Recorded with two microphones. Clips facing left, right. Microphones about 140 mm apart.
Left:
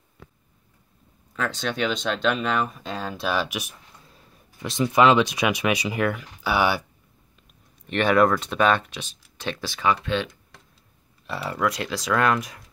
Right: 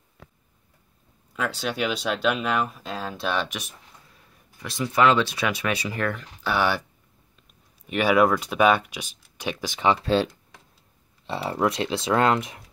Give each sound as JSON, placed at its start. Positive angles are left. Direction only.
{"t": 1.3, "sound": "speech", "side_deg": -10}
{"t": 4.6, "sound": "speech", "side_deg": 20}
{"t": 7.8, "sound": "speech", "side_deg": -5}
{"t": 10.0, "sound": "speech", "side_deg": -35}